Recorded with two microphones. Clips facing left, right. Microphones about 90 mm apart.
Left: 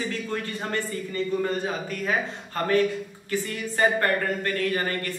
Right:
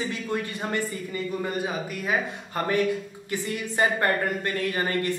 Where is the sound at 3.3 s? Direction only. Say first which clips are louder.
Left 1 dB; 20° right (ahead or behind).